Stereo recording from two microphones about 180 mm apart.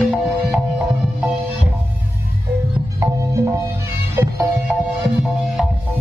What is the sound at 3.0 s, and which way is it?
Music, 15° right (ahead or behind).